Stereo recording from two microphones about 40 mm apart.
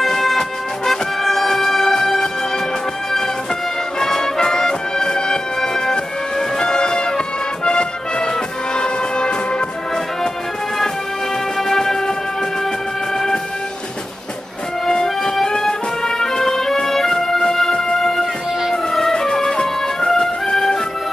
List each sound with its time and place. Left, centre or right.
0.0 s music: centre
4.0 s music: centre
11.6 s music: centre
14.9 s music: centre